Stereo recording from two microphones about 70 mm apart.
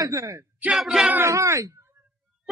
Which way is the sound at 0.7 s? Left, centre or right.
Centre.